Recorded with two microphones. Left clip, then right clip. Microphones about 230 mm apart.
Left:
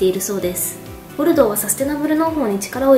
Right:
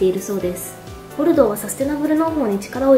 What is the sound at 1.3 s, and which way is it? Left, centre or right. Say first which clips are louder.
A woman's voice: left 1 dB; centre.